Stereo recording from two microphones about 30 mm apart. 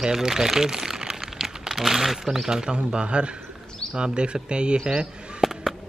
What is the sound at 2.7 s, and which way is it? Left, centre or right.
Speech, right.